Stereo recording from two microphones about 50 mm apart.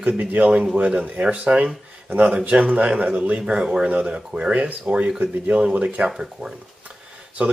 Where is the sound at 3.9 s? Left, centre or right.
Right.